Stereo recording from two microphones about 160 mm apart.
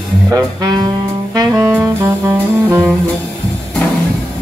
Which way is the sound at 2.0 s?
20° right (ahead or behind).